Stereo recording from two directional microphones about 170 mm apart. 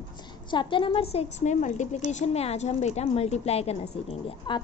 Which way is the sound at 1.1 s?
45° left (ahead or behind).